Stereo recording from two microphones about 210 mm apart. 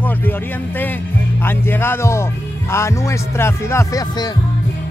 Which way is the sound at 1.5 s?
10° left (ahead or behind).